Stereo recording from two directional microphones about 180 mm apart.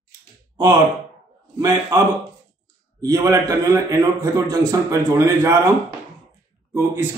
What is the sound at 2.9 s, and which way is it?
Speech, 20° right (ahead or behind).